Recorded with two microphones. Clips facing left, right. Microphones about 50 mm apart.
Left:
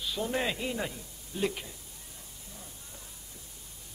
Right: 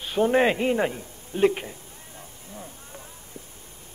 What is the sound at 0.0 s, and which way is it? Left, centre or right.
A man's voice, right.